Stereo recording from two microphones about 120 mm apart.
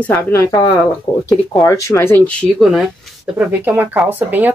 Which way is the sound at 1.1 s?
10° left (ahead or behind).